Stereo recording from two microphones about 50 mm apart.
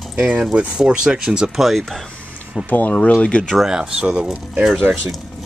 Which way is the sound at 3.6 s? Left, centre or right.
Centre.